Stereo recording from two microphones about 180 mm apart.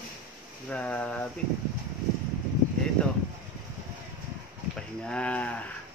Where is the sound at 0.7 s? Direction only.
5° left (ahead or behind).